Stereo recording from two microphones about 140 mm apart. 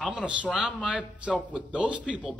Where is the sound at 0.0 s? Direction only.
10° right (ahead or behind).